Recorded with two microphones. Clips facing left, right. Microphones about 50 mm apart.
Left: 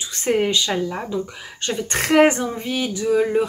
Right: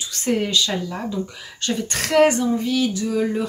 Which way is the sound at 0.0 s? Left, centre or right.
Left.